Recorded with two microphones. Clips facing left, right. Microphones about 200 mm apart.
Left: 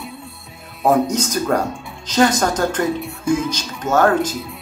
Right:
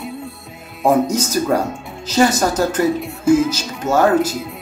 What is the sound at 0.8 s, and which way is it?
A woman's voice, 5° right (ahead or behind).